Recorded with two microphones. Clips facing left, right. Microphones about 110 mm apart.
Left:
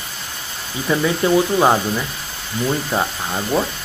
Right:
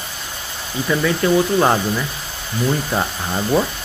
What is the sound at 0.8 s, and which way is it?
Speech, 15° left (ahead or behind).